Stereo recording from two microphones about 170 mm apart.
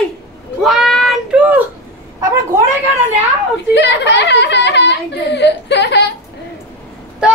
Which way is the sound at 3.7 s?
90° left.